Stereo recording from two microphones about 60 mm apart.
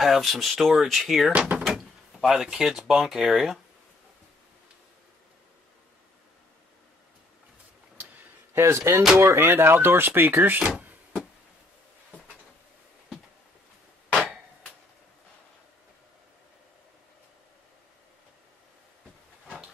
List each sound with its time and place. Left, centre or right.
0.0 s speech: centre
1.3 s speech: right
1.6 s speech: centre
8.5 s speech: right